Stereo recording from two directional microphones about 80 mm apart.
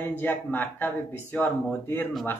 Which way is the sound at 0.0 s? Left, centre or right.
Left.